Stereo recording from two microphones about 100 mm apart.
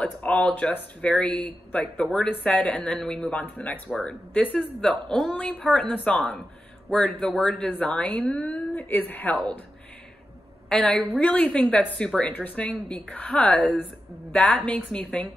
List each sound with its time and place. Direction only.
0.0 s speech: 10° left (ahead or behind)
10.7 s speech: 5° left (ahead or behind)